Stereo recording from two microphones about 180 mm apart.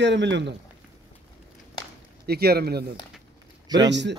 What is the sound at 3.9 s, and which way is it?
Speech, 75° right (ahead or behind).